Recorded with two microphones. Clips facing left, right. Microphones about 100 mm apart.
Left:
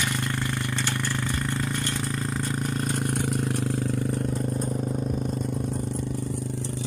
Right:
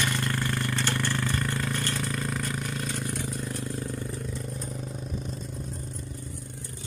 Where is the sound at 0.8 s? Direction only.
10° left (ahead or behind).